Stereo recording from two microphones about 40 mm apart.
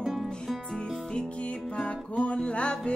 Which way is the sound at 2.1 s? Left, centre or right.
Left.